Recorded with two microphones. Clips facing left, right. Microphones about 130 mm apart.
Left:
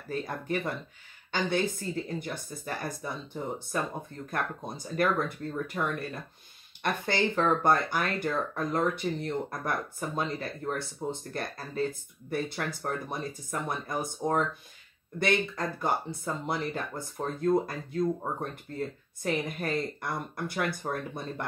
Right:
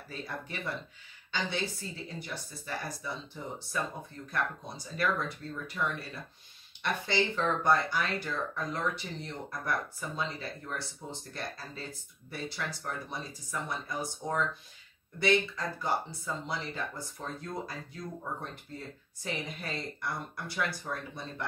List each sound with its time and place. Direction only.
0.1 s speech: 50° left (ahead or behind)